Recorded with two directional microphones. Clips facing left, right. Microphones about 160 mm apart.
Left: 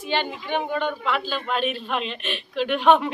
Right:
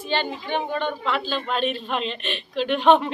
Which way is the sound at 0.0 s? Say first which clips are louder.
Even; 10° left (ahead or behind).